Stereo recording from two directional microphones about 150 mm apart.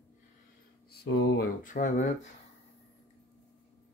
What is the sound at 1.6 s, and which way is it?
Speech, 60° left (ahead or behind).